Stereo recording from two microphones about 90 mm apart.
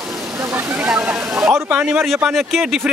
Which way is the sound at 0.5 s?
15° right (ahead or behind).